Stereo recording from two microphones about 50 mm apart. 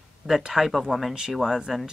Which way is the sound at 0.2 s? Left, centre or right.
Centre.